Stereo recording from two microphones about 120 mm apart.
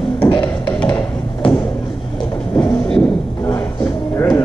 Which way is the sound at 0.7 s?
10° left (ahead or behind).